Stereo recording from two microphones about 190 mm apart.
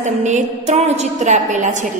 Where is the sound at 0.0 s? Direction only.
40° right (ahead or behind).